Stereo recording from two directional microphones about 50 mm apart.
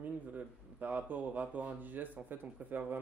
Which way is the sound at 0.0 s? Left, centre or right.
Right.